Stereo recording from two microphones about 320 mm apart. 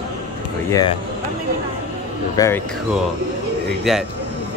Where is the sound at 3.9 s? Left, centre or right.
Centre.